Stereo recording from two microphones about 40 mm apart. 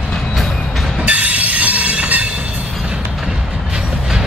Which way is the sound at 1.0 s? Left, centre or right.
Right.